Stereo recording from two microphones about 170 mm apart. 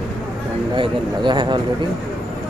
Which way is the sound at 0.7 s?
30° right (ahead or behind).